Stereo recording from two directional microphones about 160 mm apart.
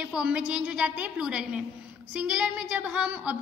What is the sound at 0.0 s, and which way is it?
A woman's voice, 5° right (ahead or behind).